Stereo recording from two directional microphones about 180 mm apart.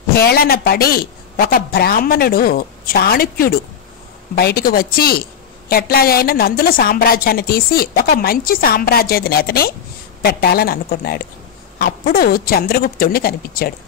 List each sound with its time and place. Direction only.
0.1 s a woman's voice: 60° left (ahead or behind)